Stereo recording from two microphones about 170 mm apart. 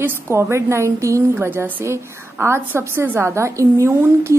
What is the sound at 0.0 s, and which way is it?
A woman's voice, 15° right (ahead or behind).